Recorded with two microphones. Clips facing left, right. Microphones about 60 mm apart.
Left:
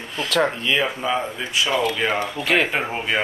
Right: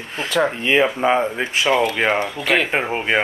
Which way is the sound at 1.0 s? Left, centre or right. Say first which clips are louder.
Right 6 dB; right.